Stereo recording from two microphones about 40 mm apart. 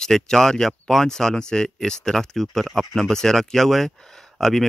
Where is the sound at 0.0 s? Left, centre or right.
Centre.